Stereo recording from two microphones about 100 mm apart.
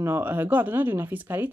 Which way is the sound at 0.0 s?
20° right (ahead or behind).